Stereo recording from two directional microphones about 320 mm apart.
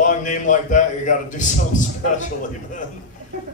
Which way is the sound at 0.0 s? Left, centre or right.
Left.